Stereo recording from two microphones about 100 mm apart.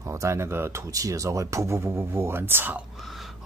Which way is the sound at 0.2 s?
30° right (ahead or behind).